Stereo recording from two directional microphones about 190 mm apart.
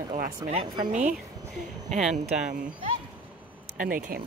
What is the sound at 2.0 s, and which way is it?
Speech, 5° right (ahead or behind).